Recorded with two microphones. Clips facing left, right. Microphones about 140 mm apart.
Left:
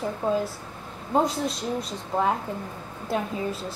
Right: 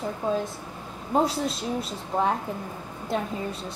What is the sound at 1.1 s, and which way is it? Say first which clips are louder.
A woman's voice: even; centre (ahead or behind).